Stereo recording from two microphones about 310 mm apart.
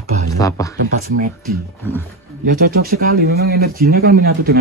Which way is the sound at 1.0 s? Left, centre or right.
Right.